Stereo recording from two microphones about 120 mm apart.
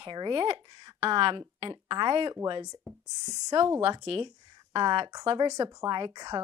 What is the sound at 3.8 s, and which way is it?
Speech, 50° right (ahead or behind).